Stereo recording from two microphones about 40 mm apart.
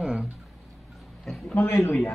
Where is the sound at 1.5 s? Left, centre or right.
Left.